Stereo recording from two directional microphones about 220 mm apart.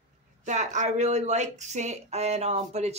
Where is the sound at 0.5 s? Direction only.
35° right (ahead or behind).